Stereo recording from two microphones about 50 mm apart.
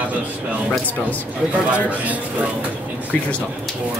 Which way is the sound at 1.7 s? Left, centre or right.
Right.